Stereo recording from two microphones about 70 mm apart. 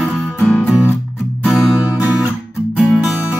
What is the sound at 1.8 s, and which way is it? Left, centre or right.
Music, centre.